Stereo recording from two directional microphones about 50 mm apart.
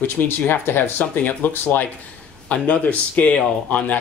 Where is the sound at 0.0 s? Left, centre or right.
Left.